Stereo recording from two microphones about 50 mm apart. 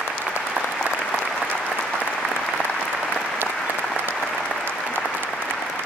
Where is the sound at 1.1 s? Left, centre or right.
Centre.